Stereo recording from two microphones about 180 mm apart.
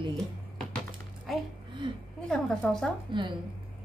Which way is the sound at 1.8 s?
25° right (ahead or behind).